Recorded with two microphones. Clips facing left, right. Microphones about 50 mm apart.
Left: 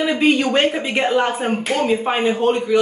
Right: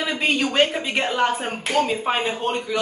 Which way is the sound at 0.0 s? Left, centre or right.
Centre.